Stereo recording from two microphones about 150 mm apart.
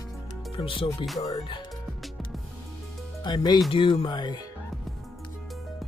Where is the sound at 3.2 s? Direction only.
30° left (ahead or behind).